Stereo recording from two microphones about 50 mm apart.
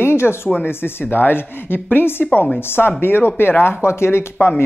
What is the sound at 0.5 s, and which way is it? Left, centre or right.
Speech, left.